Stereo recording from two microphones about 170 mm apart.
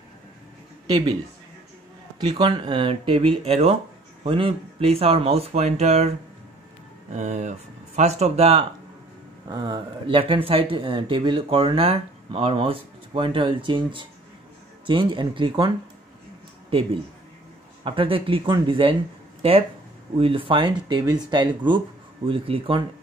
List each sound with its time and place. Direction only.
0.8 s speech: 25° right (ahead or behind)
2.1 s speech: 25° right (ahead or behind)
9.5 s speech: 25° right (ahead or behind)
17.8 s speech: 30° right (ahead or behind)
20.2 s speech: 30° right (ahead or behind)